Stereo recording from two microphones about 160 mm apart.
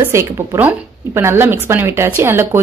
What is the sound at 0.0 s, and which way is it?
A woman's voice, 15° right (ahead or behind).